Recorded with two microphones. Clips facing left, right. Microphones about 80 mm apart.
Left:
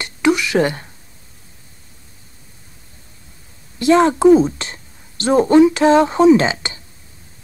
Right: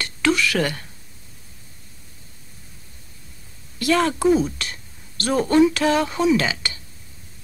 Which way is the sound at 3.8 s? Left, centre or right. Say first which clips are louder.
Left 7 dB; left.